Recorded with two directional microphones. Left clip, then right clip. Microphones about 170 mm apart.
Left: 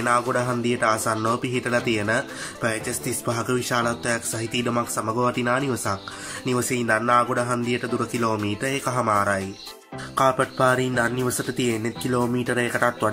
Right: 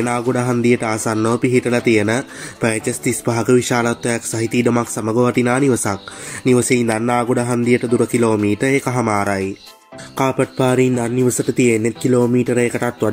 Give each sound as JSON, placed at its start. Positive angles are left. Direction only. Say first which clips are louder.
{"t": 0.0, "sound": "speech", "louder": "right 2 dB", "side_deg": -20}